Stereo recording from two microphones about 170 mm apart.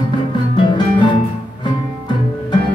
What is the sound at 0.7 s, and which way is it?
Music, 25° left (ahead or behind).